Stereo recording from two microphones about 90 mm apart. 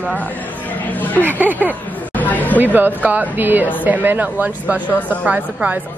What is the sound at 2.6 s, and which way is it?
A woman's voice, 20° right (ahead or behind).